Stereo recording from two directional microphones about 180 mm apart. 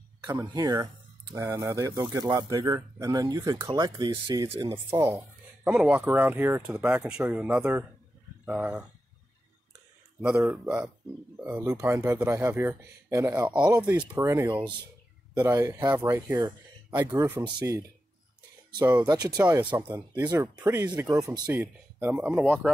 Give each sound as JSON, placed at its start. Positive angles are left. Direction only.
{"t": 0.3, "sound": "speech", "side_deg": -20}
{"t": 5.1, "sound": "speech", "side_deg": 0}
{"t": 10.2, "sound": "speech", "side_deg": -5}
{"t": 18.8, "sound": "speech", "side_deg": -20}
{"t": 22.1, "sound": "speech", "side_deg": -5}